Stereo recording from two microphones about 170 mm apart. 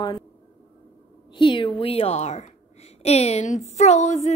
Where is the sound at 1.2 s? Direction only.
30° left (ahead or behind).